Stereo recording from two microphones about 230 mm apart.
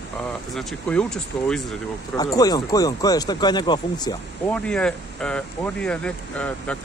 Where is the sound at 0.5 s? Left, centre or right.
Centre.